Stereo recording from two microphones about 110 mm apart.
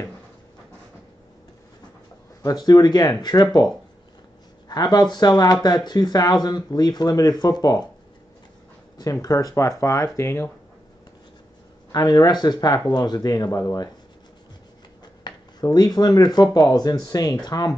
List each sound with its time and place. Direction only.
2.4 s speech: 40° left (ahead or behind)
4.6 s speech: 35° left (ahead or behind)
8.9 s speech: 35° left (ahead or behind)
11.9 s speech: 35° left (ahead or behind)
15.2 s speech: 35° left (ahead or behind)